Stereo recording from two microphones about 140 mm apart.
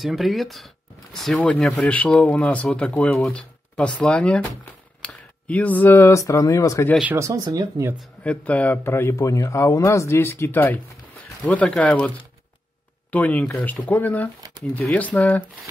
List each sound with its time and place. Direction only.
0.0 s speech: centre (ahead or behind); by 6.9 s 20° left (ahead or behind)
7.2 s speech: 20° right (ahead or behind)
8.2 s speech: 10° left (ahead or behind)
13.1 s speech: 10° left (ahead or behind)